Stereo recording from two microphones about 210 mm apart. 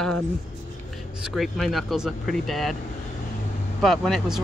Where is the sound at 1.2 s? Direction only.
Centre (ahead or behind).